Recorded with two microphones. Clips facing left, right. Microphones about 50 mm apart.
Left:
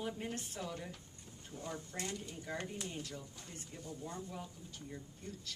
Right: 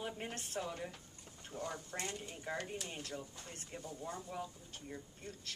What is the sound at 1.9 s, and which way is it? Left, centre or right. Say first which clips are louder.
Speech: even; right.